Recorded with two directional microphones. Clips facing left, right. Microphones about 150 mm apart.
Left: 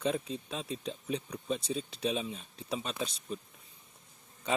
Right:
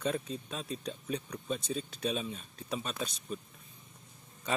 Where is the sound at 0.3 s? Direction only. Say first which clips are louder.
Left 1 dB; 20° left (ahead or behind).